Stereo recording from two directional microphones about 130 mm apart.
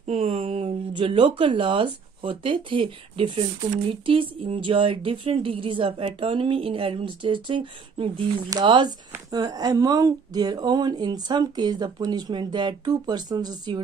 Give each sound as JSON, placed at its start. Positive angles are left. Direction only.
{"t": 0.0, "sound": "speech", "side_deg": -60}